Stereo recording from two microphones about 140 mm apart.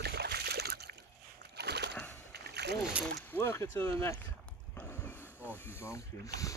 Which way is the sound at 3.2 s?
15° left (ahead or behind).